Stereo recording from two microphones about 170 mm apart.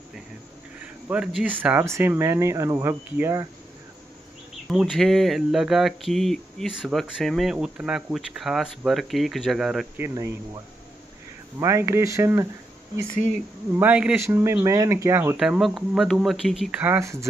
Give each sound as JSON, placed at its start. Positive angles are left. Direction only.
{"t": 1.0, "sound": "speech", "side_deg": -5}
{"t": 4.6, "sound": "speech", "side_deg": 0}
{"t": 9.9, "sound": "speech", "side_deg": -15}
{"t": 11.6, "sound": "speech", "side_deg": -15}
{"t": 13.7, "sound": "speech", "side_deg": -10}
{"t": 15.3, "sound": "speech", "side_deg": 0}
{"t": 16.8, "sound": "speech", "side_deg": -15}